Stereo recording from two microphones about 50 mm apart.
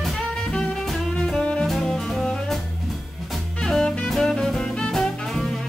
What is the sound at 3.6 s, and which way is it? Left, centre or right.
Music, centre.